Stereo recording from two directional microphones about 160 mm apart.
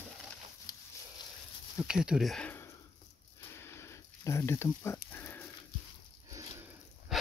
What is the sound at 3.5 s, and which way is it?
Pig, 15° left (ahead or behind).